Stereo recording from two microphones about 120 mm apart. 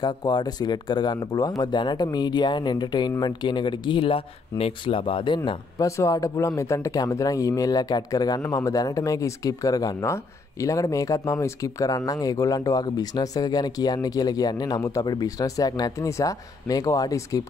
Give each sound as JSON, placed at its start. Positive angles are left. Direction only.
{"t": 0.0, "sound": "speech", "side_deg": 35}
{"t": 5.8, "sound": "speech", "side_deg": 25}